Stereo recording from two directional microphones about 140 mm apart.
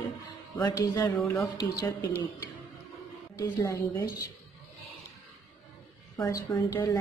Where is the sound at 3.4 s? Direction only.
20° left (ahead or behind).